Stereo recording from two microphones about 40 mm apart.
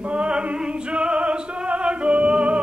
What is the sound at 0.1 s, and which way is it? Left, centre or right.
Music, right.